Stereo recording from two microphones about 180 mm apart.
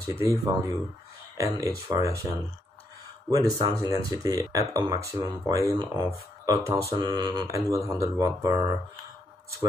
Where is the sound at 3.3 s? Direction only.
20° right (ahead or behind).